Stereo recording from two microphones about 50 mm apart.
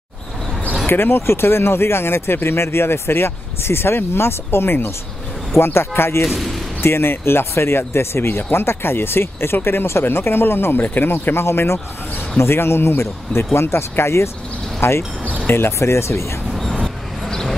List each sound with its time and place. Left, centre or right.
0.8 s speech: left
6.2 s speech: centre
6.8 s speech: left
16.5 s vehicle: centre
17.3 s a sound: centre